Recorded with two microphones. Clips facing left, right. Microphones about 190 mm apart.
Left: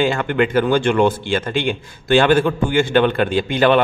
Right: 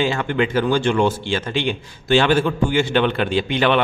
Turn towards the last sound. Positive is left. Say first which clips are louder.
# left 3 dB
turn(degrees=45)  # may be behind; listen again after turning